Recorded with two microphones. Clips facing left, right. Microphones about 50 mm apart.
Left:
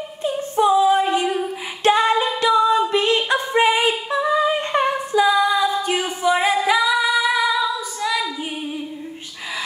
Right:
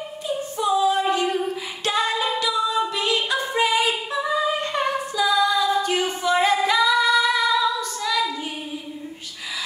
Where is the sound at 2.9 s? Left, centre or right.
Left.